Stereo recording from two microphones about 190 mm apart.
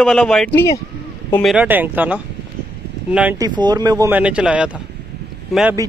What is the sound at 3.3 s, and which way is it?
Speech, 20° right (ahead or behind).